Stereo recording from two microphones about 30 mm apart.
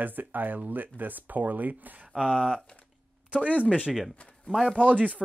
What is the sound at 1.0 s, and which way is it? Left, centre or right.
Speech, right.